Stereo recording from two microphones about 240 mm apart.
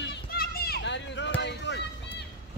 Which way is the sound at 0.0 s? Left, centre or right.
Left.